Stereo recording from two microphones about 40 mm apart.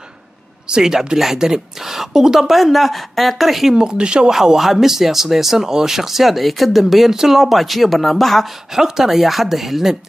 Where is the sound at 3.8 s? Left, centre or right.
Right.